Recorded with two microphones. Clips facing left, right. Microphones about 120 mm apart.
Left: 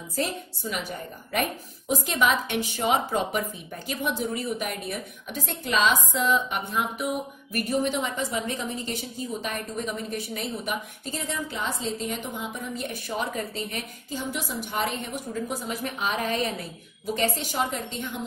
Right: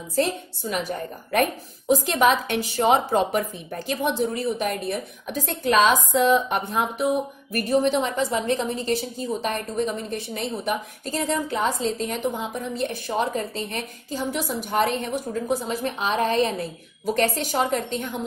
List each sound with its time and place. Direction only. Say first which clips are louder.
0.2 s a woman's voice: right 6 dB; 40° right (ahead or behind)
6.5 s a woman's voice: right 4 dB; 30° right (ahead or behind)
10.7 s a woman's voice: right 5 dB; 40° right (ahead or behind)
17.0 s a woman's voice: right 4 dB; 45° right (ahead or behind)